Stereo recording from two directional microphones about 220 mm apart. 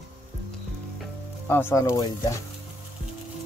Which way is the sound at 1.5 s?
10° left (ahead or behind).